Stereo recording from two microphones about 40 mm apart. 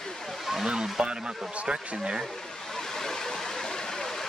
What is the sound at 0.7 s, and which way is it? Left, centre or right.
Speech, right.